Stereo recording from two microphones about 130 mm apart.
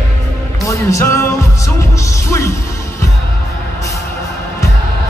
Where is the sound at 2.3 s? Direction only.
20° left (ahead or behind).